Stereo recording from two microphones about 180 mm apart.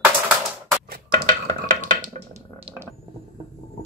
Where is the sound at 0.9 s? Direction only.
50° right (ahead or behind).